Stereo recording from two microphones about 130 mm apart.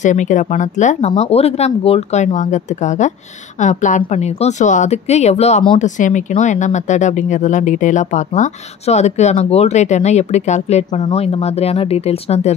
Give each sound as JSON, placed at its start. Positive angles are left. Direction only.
{"t": 0.0, "sound": "speech", "side_deg": 70}
{"t": 5.8, "sound": "speech", "side_deg": 75}